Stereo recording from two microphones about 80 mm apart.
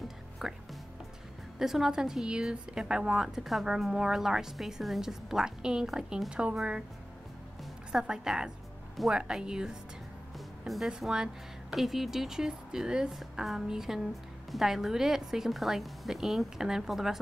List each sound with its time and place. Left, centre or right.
0.4 s speech: centre
1.6 s speech: centre
7.9 s speech: centre
10.9 s a woman's voice: centre